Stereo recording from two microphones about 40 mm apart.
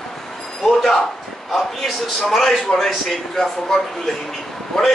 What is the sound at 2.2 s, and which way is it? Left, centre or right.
Speech, centre.